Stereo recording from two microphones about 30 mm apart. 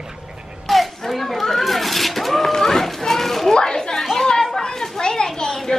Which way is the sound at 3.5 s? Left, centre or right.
Left.